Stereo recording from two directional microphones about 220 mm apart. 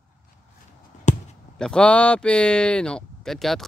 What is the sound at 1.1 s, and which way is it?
Chop, 35° left (ahead or behind).